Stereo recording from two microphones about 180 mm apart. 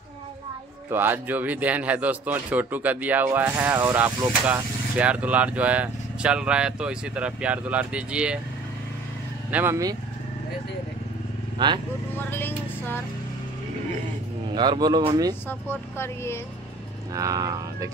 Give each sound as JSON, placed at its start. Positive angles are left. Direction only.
{"t": 0.8, "sound": "speech", "side_deg": -10}
{"t": 9.5, "sound": "speech", "side_deg": -10}
{"t": 11.5, "sound": "speech", "side_deg": -25}
{"t": 12.2, "sound": "speech", "side_deg": 10}
{"t": 14.5, "sound": "speech", "side_deg": -25}
{"t": 15.4, "sound": "speech", "side_deg": 15}
{"t": 17.1, "sound": "speech", "side_deg": -20}